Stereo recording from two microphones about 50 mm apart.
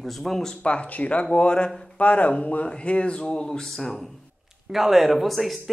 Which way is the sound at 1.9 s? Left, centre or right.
Left.